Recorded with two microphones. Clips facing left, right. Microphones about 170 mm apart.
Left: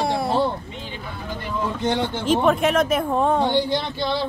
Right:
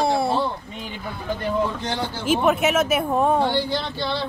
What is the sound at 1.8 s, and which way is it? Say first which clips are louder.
Speech: left 4 dB; 20° left (ahead or behind).